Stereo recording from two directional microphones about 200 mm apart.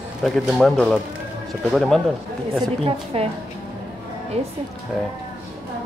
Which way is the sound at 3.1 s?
30° right (ahead or behind).